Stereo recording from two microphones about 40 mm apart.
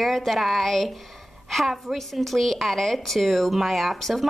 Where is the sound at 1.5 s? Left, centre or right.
Centre.